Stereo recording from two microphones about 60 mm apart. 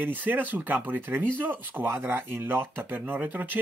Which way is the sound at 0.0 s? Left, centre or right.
Right.